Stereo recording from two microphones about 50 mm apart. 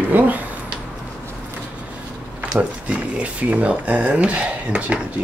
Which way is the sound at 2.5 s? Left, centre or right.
Right.